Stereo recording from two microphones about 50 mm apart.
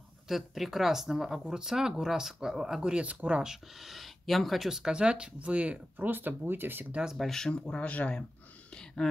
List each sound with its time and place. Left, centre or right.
0.3 s speech: centre; by 3.4 s right
3.4 s speech: centre
4.9 s speech: centre
6.0 s speech: right
7.2 s speech: centre
7.6 s speech: left